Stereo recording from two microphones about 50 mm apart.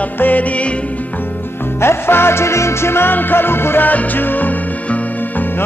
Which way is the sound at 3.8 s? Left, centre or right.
Left.